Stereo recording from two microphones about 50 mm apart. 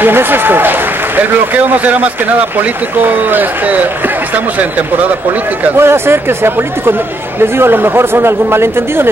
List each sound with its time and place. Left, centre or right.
0.0 s speech: right
1.7 s speech: right
5.8 s speech: right